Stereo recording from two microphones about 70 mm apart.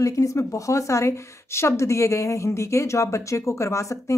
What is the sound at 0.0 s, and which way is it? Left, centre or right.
Speech, left.